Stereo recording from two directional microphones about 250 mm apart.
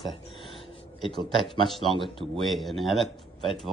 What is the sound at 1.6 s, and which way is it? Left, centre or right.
Speech, centre.